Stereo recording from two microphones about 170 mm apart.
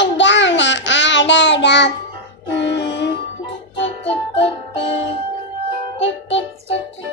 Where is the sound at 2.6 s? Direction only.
90° left.